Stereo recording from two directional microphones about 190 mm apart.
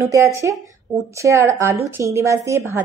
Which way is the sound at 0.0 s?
15° right (ahead or behind).